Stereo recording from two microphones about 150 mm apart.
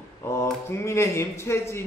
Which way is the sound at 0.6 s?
20° left (ahead or behind).